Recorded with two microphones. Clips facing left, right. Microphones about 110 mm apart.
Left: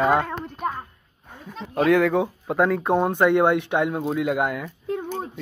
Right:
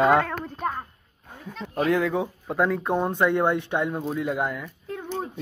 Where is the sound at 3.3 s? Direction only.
75° left (ahead or behind).